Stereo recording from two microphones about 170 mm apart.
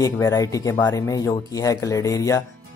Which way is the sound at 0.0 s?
20° left (ahead or behind).